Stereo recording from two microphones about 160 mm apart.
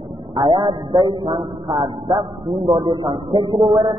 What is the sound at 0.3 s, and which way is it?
A man's voice, 30° right (ahead or behind).